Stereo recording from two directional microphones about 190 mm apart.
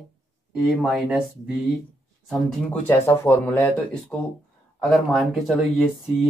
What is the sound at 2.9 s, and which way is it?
Speech, 10° left (ahead or behind).